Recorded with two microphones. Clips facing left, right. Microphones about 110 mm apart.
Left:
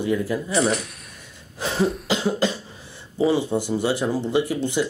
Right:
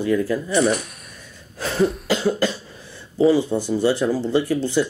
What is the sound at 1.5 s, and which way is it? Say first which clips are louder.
Cough: right 2 dB; 30° left (ahead or behind).